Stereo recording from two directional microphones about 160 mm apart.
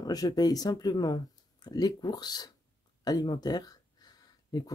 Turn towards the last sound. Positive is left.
turn(degrees=25)  # may be behind; listen again after turning